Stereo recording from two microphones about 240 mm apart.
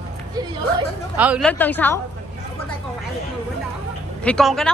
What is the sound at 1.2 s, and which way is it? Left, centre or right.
Speech, centre.